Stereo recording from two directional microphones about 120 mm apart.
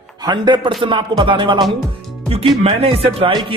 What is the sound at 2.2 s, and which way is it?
A man's voice, 55° right (ahead or behind).